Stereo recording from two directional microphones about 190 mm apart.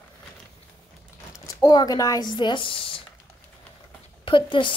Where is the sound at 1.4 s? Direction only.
20° left (ahead or behind).